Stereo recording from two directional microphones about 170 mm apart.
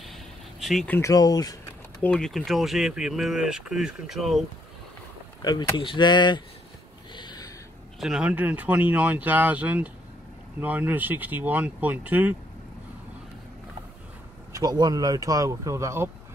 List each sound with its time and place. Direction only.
0.0 s vehicle: centre (ahead or behind)
1.1 s speech: 20° left (ahead or behind)
2.0 s speech: 5° left (ahead or behind)
5.4 s speech: 25° left (ahead or behind)
7.2 s a sound: 25° left (ahead or behind)
8.0 s speech: 5° right (ahead or behind)
14.5 s speech: 20° right (ahead or behind)